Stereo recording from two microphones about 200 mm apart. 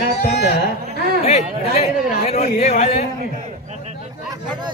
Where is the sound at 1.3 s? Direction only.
35° left (ahead or behind).